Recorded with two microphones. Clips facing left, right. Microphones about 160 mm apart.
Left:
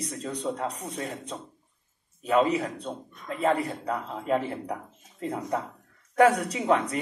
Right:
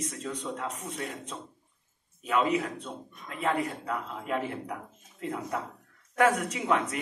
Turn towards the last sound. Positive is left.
turn(degrees=35)  # may be behind; listen again after turning